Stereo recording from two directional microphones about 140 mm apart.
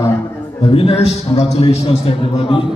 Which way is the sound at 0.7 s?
45° left (ahead or behind).